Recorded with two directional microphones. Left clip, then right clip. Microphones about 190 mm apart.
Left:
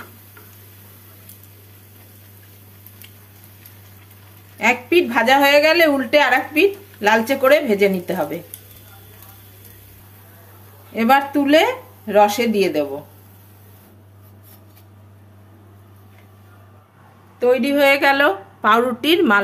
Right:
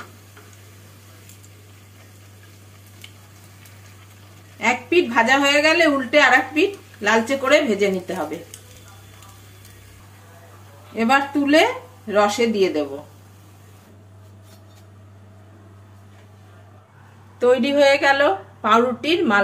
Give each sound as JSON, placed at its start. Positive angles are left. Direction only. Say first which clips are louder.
{"t": 4.6, "sound": "a woman's voice", "louder": "left 2 dB", "side_deg": 30}
{"t": 11.0, "sound": "a woman's voice", "louder": "left 3 dB", "side_deg": 30}
{"t": 17.6, "sound": "a woman's voice", "louder": "left 1 dB", "side_deg": 15}